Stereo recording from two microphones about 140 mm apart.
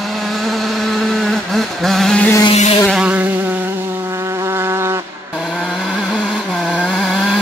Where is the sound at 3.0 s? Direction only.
10° right (ahead or behind).